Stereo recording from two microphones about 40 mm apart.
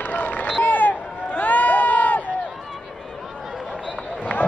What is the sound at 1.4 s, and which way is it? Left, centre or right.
Crowd, left.